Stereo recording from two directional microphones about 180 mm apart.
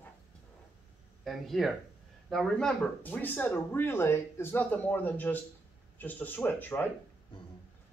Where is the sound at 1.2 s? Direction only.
Centre (ahead or behind).